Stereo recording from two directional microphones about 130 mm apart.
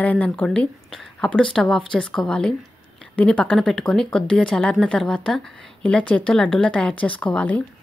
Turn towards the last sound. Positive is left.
turn(degrees=10)  # may be behind; listen again after turning